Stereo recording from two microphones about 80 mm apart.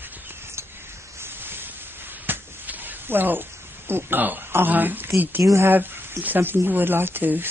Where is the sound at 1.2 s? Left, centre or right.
Right.